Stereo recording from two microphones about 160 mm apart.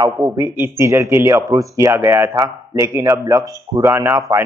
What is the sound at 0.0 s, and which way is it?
Speech, 15° right (ahead or behind).